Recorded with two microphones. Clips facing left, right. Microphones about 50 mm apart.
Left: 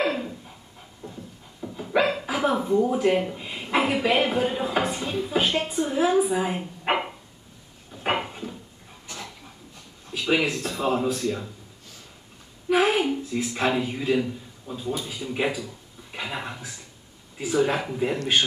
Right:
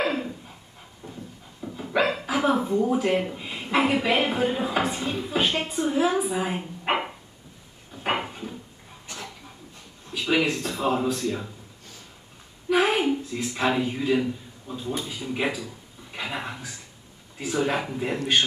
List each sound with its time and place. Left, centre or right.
0.0 s dog: centre
1.0 s a sound: right
1.6 s dog: centre
2.8 s speech: centre
6.8 s dog: centre
7.9 s a sound: centre
10.1 s speech: centre
12.6 s a sound: centre
13.3 s speech: centre